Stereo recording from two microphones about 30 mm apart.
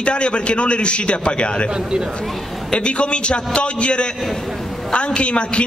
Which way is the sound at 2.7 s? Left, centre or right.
Left.